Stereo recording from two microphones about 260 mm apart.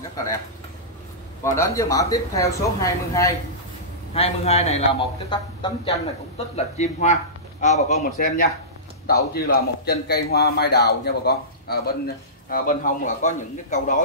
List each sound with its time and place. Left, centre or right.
1.4 s speech: centre
4.1 s a man's voice: left